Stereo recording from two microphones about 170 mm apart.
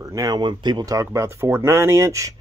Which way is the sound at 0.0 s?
20° right (ahead or behind).